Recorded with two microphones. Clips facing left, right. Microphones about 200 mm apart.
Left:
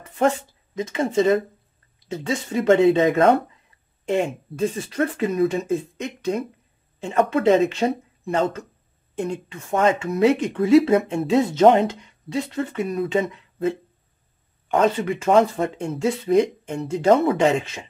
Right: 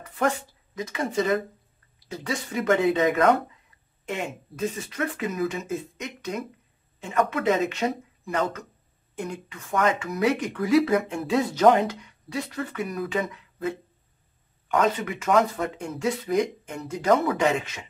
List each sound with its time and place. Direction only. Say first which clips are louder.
0.2 s speech: left 5 dB; 25° left (ahead or behind)